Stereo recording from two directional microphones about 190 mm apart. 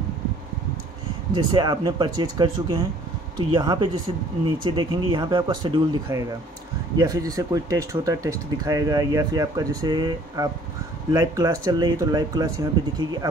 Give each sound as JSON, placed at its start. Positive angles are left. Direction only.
{"t": 1.3, "sound": "speech", "side_deg": -20}